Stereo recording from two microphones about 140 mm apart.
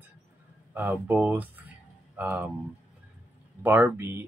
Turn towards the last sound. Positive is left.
turn(degrees=-15)  # may be behind; listen again after turning